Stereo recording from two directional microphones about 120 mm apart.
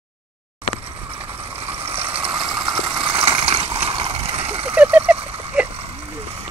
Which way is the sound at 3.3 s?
50° right (ahead or behind).